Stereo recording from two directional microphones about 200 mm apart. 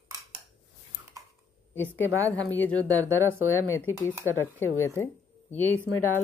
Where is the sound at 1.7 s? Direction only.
10° left (ahead or behind).